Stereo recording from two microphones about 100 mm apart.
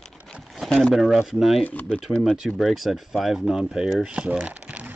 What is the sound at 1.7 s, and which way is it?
Speech, 15° left (ahead or behind).